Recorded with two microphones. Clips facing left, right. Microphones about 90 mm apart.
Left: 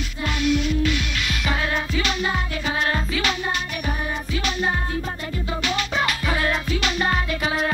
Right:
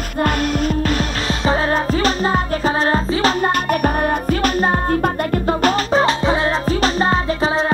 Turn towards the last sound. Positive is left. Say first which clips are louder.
# right 6 dB
turn(degrees=-30)  # may be behind; listen again after turning